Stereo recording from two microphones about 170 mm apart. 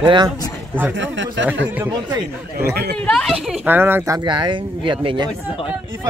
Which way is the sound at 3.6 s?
10° right (ahead or behind).